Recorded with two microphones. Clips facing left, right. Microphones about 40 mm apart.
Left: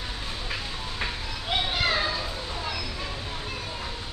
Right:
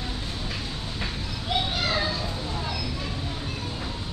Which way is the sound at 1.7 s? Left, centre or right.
Centre.